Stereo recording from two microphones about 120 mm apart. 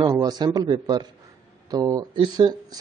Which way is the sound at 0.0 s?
35° right (ahead or behind).